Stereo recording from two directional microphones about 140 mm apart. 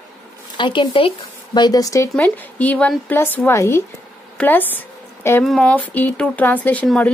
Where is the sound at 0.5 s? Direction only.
35° left (ahead or behind).